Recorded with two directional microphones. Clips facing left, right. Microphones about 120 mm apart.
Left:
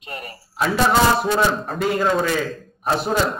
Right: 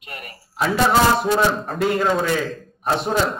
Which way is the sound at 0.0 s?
30° left (ahead or behind).